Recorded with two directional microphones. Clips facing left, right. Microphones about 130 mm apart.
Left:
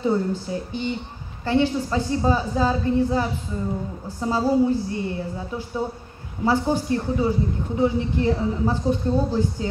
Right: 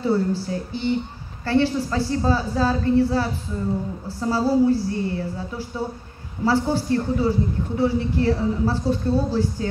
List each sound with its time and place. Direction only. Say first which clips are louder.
0.0 s a man's voice: right 1 dB; 15° left (ahead or behind)